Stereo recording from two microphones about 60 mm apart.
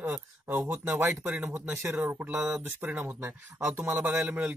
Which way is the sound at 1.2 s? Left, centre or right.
Right.